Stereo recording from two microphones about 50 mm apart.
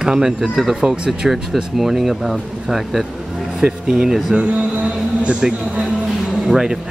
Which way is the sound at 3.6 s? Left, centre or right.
Centre.